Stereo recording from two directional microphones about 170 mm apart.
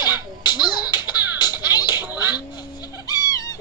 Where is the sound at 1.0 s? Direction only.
25° left (ahead or behind).